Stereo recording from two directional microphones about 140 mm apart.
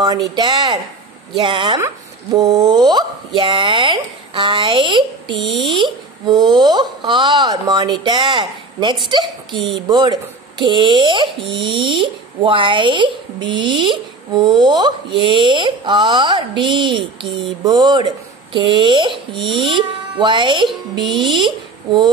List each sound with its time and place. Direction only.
0.0 s a woman's voice: 30° right (ahead or behind)
2.3 s a woman's voice: 25° right (ahead or behind)
21.0 s speech: centre (ahead or behind)